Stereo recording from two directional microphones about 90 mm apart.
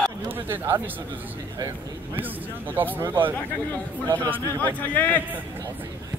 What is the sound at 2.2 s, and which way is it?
Speech, 20° right (ahead or behind).